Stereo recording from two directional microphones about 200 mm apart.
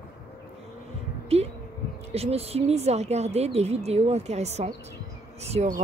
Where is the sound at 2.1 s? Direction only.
30° right (ahead or behind).